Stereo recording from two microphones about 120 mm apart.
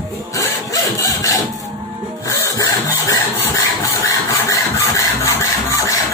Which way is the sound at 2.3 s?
30° left (ahead or behind).